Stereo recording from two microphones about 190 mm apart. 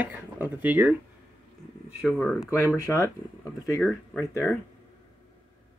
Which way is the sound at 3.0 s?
15° left (ahead or behind).